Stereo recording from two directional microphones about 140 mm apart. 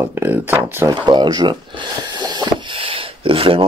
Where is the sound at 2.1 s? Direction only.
30° right (ahead or behind).